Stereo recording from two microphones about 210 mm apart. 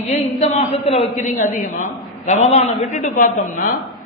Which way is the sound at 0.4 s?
30° left (ahead or behind).